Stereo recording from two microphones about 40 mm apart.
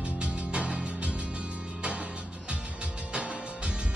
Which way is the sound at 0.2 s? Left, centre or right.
Right.